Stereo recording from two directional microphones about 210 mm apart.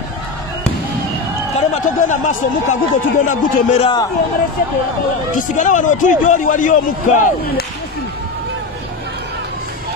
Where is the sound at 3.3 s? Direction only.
35° left (ahead or behind).